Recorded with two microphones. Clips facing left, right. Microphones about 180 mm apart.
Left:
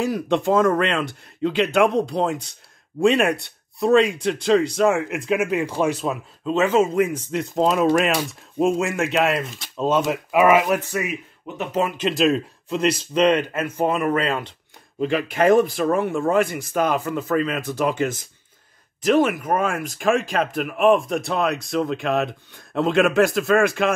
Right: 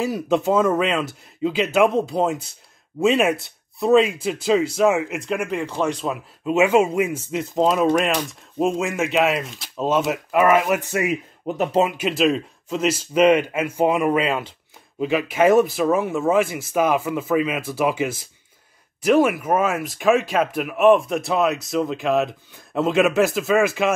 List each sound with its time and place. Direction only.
0.0 s speech: centre (ahead or behind)
6.4 s speech: 10° right (ahead or behind)
10.8 s a man's voice: 20° right (ahead or behind)
11.4 s speech: 35° right (ahead or behind)
12.0 s speech: centre (ahead or behind)